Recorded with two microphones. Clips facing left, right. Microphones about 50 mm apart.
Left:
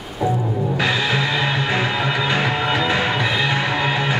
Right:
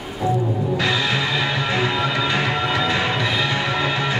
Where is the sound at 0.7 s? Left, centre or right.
Centre.